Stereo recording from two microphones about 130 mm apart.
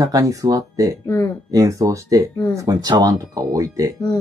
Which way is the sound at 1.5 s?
25° right (ahead or behind).